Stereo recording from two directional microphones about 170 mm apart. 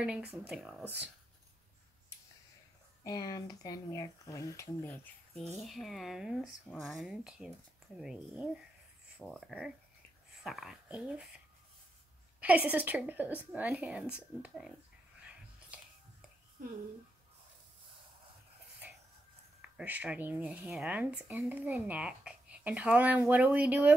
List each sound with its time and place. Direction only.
0.0 s speech: 5° right (ahead or behind)
3.0 s speech: 20° left (ahead or behind)
5.6 s speech: centre (ahead or behind)
12.4 s speech: 10° right (ahead or behind)
15.2 s whispering: 5° right (ahead or behind)
19.6 s speech: 10° right (ahead or behind)